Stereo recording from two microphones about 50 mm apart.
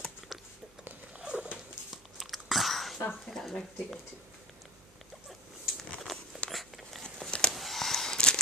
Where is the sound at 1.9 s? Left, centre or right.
Centre.